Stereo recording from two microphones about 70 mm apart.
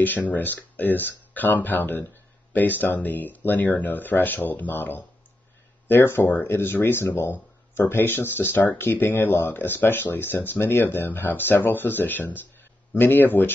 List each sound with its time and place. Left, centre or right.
0.3 s speech: left